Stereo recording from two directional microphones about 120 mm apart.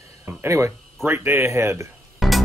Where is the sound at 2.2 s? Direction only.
Centre (ahead or behind).